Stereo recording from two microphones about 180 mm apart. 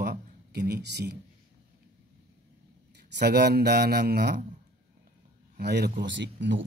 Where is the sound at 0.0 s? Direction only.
60° right (ahead or behind).